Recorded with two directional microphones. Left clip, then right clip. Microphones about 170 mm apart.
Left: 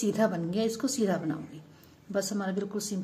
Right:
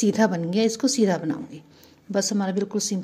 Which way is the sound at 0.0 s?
40° right (ahead or behind).